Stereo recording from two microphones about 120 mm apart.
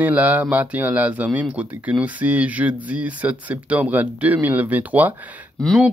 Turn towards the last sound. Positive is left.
turn(degrees=5)  # may be behind; listen again after turning